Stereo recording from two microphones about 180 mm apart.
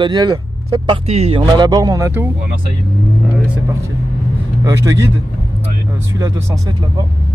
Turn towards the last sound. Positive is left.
turn(degrees=-20)  # may be behind; listen again after turning